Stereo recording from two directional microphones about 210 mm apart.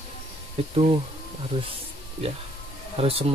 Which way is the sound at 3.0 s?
30° right (ahead or behind).